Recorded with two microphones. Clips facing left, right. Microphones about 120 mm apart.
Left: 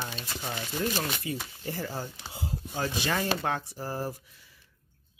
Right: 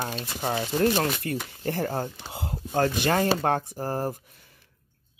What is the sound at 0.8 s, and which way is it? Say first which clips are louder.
Speech: right 7 dB; 60° right (ahead or behind).